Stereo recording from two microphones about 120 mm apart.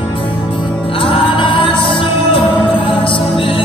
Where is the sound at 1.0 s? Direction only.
50° left (ahead or behind).